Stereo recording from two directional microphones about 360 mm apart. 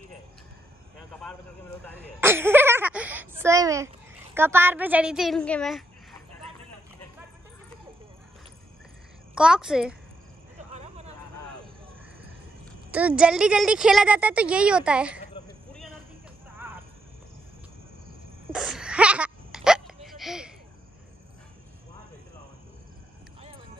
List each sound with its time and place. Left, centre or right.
2.1 s speech: centre
9.3 s speech: centre
10.7 s vehicle: centre
12.9 s speech: centre
18.5 s hiccup: centre